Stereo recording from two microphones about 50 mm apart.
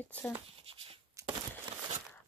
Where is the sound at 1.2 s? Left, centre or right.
Right.